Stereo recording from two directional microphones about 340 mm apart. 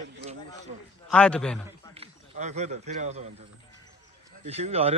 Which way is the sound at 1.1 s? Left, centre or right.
Centre.